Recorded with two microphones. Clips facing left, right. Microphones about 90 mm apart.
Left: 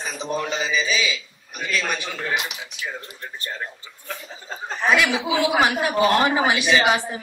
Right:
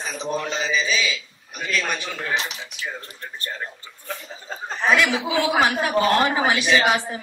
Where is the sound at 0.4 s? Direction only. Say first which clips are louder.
Left 1 dB; 10° left (ahead or behind).